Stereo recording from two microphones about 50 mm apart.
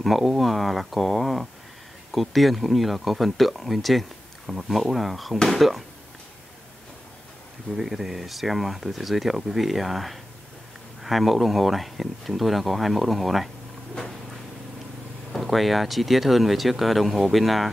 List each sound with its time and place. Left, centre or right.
0.0 s speech: centre
7.7 s speech: centre
15.3 s speech: centre